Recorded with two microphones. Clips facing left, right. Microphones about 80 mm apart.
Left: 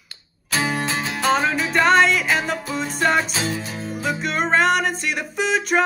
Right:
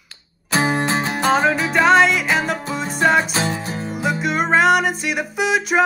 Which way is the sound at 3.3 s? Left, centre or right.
Right.